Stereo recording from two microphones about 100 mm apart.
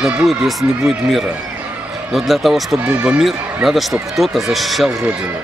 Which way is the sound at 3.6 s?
Centre (ahead or behind).